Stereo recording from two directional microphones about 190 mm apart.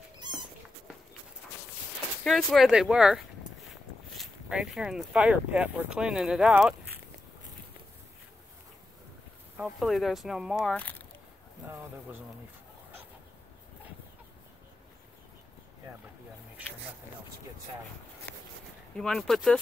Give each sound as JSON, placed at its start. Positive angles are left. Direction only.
{"t": 0.3, "sound": "cat", "side_deg": -25}
{"t": 2.2, "sound": "speech", "side_deg": 0}
{"t": 9.6, "sound": "speech", "side_deg": 0}
{"t": 11.6, "sound": "speech", "side_deg": -10}
{"t": 18.9, "sound": "speech", "side_deg": 0}